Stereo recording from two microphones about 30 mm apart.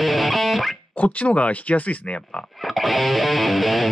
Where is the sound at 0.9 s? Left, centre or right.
Left.